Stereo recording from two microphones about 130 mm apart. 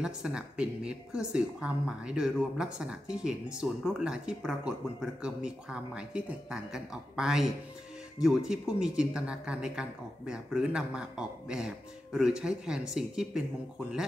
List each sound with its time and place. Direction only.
0.0 s speech: 5° right (ahead or behind)